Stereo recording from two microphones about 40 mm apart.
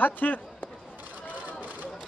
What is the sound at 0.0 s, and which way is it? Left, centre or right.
Speech, left.